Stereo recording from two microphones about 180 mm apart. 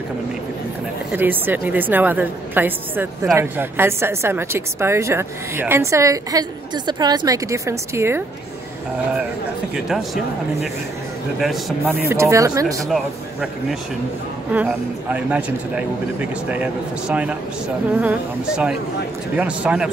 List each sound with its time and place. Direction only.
1.1 s a woman's voice: 10° right (ahead or behind)
11.3 s a woman's voice: 5° right (ahead or behind)
12.9 s speech: centre (ahead or behind)
15.1 s a woman's voice: 10° right (ahead or behind)